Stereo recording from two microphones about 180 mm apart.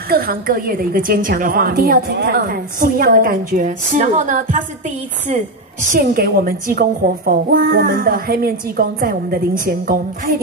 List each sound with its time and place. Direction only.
0.1 s a woman's voice: 55° right (ahead or behind)
5.9 s a woman's voice: 55° right (ahead or behind)